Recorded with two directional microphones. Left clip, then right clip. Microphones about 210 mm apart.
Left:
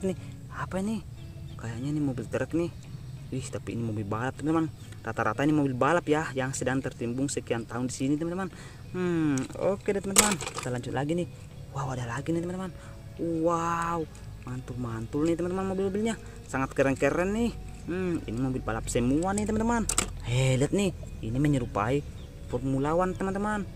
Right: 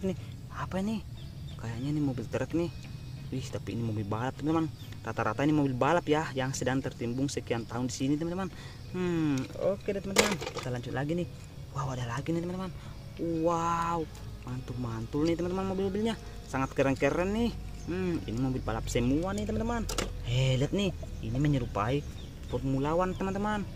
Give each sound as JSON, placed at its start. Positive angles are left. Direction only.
{"t": 0.0, "sound": "speech", "side_deg": 10}
{"t": 10.1, "sound": "speech", "side_deg": 50}
{"t": 10.7, "sound": "speech", "side_deg": 15}